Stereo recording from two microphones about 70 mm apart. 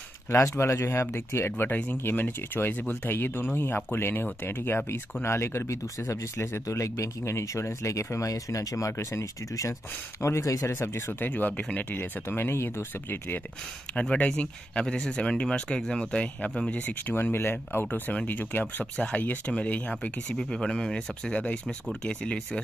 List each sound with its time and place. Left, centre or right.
0.3 s speech: left
11.1 s speech: left
14.1 s speech: centre
16.8 s speech: left
17.8 s speech: left